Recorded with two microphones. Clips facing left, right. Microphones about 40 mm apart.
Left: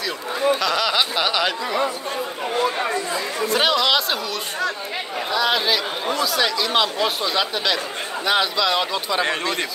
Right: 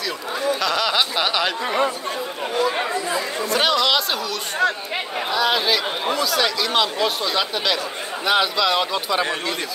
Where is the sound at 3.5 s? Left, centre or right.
Centre.